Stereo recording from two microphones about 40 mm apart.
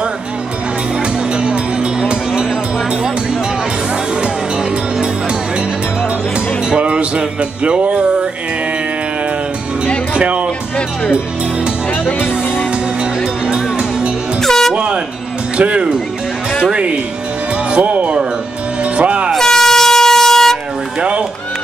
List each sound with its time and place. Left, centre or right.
1.3 s music: right
6.7 s music: right
10.1 s music: right
13.5 s music: right
14.4 s music: centre
14.7 s air horn: right
15.5 s speech: right
17.6 s music: right
19.3 s air horn: centre
21.0 s run: right